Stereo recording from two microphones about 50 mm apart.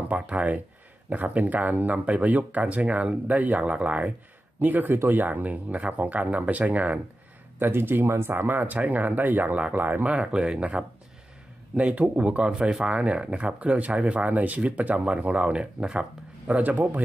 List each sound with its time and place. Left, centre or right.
0.1 s speech: right
4.6 s speech: right
7.5 s speech: right
10.1 s speech: centre
16.4 s speech: right